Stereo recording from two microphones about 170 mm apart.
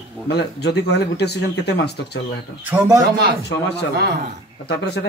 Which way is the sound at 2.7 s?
10° right (ahead or behind).